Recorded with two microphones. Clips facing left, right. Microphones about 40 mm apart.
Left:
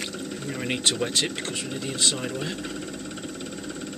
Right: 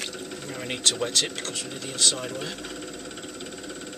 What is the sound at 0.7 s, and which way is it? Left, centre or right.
Speech, centre.